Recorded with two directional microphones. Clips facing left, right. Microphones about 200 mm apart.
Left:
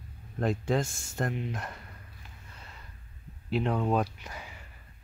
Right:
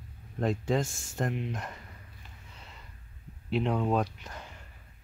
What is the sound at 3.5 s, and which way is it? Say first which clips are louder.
Speech: even; centre (ahead or behind).